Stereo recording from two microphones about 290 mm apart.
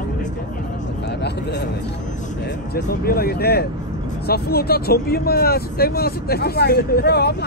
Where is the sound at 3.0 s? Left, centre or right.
Left.